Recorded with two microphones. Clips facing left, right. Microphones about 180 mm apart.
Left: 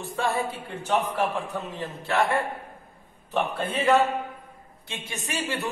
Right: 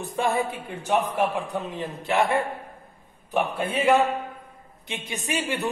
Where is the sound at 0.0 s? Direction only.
20° right (ahead or behind).